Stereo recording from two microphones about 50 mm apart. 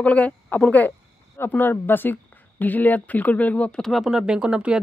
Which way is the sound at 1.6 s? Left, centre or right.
Left.